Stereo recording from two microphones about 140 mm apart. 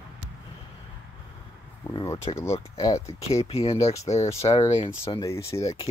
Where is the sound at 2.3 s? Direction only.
40° left (ahead or behind).